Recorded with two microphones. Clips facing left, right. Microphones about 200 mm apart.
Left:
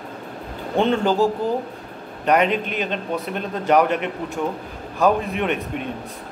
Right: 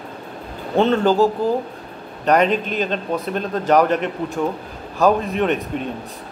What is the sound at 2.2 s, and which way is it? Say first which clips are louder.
A man's voice: right 2 dB; 35° right (ahead or behind).